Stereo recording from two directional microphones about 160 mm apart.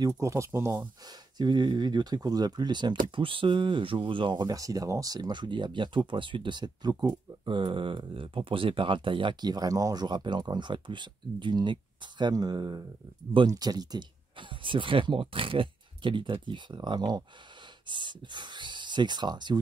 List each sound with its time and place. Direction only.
0.0 s speech: 20° right (ahead or behind)